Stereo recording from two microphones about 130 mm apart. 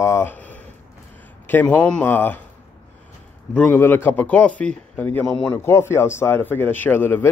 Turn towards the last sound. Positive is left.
turn(degrees=15)  # may be behind; listen again after turning